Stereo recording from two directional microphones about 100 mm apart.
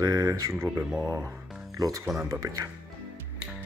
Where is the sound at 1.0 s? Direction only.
35° right (ahead or behind).